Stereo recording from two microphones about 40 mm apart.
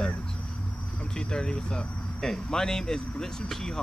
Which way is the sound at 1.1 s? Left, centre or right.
Left.